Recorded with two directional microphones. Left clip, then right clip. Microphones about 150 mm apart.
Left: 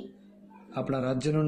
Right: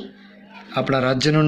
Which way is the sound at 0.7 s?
5° left (ahead or behind).